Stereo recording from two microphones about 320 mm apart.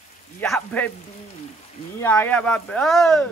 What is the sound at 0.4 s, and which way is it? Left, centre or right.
Speech, centre.